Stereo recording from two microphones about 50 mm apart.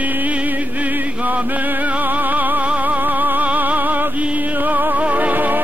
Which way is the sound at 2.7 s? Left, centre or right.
Right.